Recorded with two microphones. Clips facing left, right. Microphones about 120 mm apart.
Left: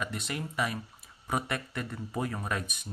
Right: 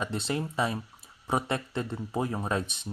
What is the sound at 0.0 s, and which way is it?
Speech, 30° right (ahead or behind).